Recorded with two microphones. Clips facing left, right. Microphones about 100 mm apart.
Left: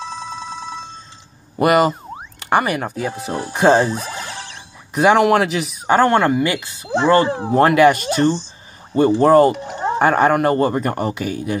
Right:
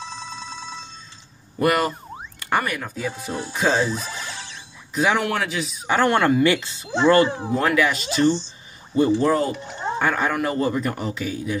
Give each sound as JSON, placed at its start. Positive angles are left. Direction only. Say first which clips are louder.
{"t": 0.2, "sound": "telephone bell ringing", "louder": "left 6 dB", "side_deg": 55}
{"t": 1.6, "sound": "speech", "louder": "left 6 dB", "side_deg": 90}
{"t": 5.9, "sound": "speech", "louder": "left 5 dB", "side_deg": 40}
{"t": 6.1, "sound": "speech", "louder": "left 2 dB", "side_deg": 25}
{"t": 7.2, "sound": "speech", "louder": "left 7 dB", "side_deg": 55}
{"t": 9.7, "sound": "a sound", "louder": "left 6 dB", "side_deg": 50}
{"t": 9.9, "sound": "speech", "louder": "left 8 dB", "side_deg": 65}